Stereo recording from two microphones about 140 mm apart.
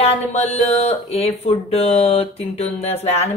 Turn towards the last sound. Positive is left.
turn(degrees=50)  # may be behind; listen again after turning